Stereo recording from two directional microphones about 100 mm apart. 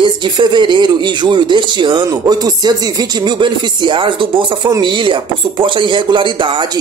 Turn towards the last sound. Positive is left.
turn(degrees=-50)  # may be behind; listen again after turning